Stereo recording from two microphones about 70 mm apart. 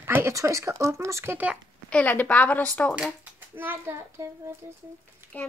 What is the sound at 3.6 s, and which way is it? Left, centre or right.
Speech, right.